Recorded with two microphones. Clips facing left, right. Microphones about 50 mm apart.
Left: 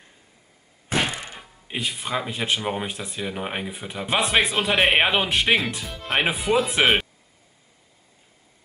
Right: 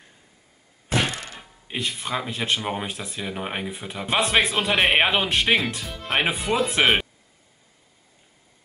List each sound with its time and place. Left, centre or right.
0.8 s thunk: centre
1.4 s speech: centre